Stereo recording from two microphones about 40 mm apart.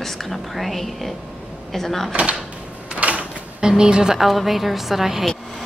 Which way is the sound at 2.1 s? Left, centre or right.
Right.